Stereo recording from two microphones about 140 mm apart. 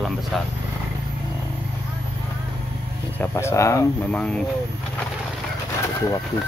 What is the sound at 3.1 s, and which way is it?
Speech, 20° left (ahead or behind).